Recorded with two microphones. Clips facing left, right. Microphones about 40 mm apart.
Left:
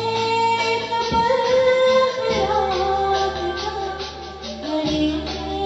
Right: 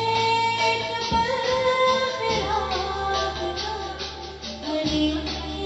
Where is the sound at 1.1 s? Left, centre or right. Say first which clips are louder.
Left 4 dB; left.